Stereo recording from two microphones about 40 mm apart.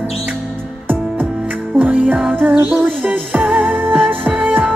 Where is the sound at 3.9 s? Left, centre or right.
Right.